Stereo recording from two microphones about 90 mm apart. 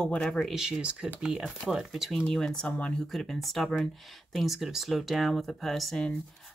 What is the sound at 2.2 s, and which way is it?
Speech, 10° left (ahead or behind).